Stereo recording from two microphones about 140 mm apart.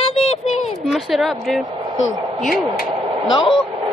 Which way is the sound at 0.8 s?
Centre (ahead or behind).